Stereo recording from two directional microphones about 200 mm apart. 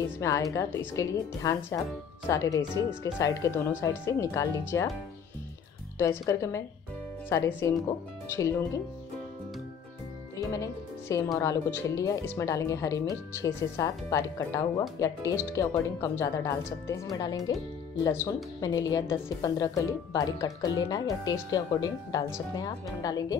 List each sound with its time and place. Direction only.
0.2 s speech: 15° left (ahead or behind)
5.9 s speech: 15° left (ahead or behind)
10.4 s speech: 15° left (ahead or behind)